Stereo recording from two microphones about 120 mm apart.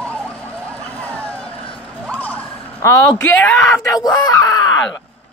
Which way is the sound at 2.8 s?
25° left (ahead or behind).